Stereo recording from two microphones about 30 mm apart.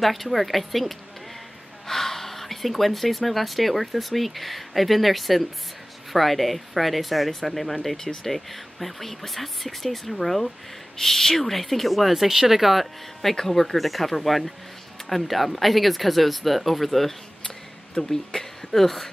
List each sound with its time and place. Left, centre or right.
0.0 s speech: centre
13.2 s speech: centre